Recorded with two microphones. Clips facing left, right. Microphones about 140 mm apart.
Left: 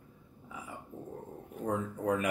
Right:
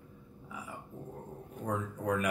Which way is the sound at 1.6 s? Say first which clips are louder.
Left 2 dB; 25° left (ahead or behind).